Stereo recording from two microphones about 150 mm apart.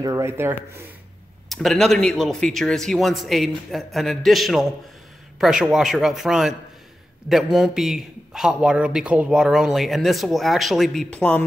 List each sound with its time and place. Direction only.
0.0 s speech: 20° right (ahead or behind)
1.5 s a man's voice: centre (ahead or behind)